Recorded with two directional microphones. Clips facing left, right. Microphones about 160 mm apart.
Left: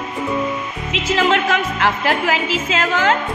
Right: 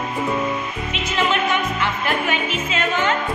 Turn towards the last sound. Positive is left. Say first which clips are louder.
# left 3 dB
turn(degrees=90)